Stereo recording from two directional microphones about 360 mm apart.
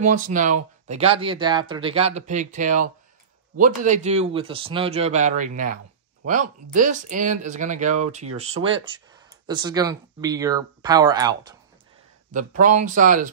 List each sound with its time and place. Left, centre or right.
0.0 s a man's voice: right
12.3 s a man's voice: right